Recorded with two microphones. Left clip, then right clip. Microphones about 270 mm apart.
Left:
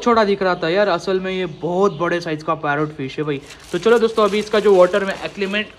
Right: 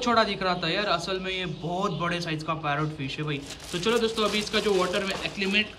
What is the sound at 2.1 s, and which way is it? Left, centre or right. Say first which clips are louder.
Speech: left 9 dB; centre.